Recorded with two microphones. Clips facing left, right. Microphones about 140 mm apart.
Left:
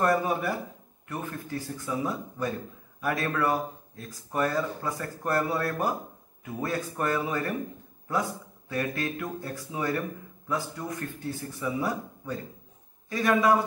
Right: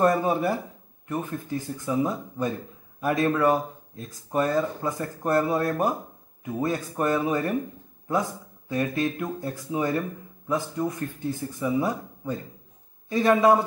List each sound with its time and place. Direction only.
0.0 s speech: 25° right (ahead or behind)